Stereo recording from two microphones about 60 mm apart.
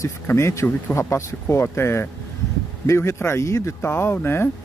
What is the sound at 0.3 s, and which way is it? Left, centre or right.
Speech, left.